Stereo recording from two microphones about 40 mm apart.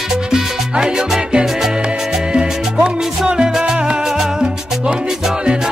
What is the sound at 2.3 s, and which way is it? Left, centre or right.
Music, right.